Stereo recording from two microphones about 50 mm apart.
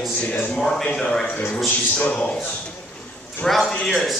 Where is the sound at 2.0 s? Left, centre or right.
Left.